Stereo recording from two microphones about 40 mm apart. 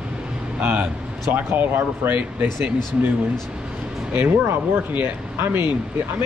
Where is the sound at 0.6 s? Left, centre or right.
Right.